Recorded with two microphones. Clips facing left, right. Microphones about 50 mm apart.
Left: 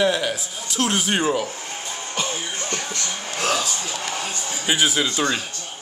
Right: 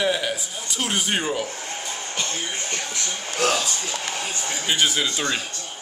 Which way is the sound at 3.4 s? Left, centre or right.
Centre.